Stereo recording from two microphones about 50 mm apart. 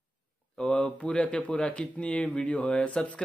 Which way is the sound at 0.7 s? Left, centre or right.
Left.